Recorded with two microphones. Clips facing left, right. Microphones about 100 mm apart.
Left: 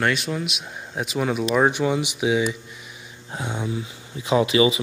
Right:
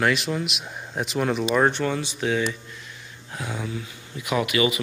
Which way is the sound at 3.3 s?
25° left (ahead or behind).